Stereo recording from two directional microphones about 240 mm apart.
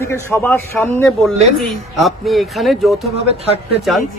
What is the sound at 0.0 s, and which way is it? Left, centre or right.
A man's voice, centre.